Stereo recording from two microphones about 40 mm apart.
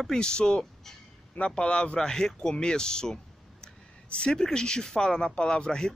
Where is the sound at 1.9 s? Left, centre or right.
Centre.